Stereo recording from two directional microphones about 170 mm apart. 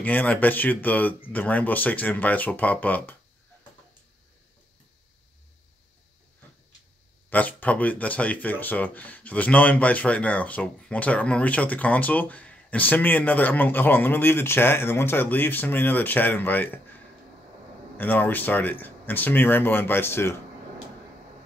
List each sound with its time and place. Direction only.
0.0 s speech: 10° left (ahead or behind)
7.2 s speech: 10° left (ahead or behind)
17.9 s speech: 10° left (ahead or behind)